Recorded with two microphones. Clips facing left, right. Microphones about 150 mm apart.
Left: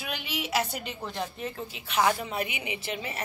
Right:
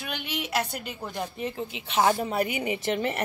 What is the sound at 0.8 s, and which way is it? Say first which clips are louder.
Speech: right 1 dB; 10° right (ahead or behind).